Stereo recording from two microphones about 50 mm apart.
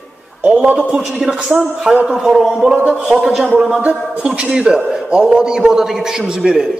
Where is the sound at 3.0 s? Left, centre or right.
Centre.